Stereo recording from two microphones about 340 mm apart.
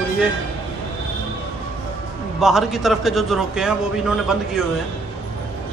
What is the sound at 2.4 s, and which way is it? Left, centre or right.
A man's voice, centre.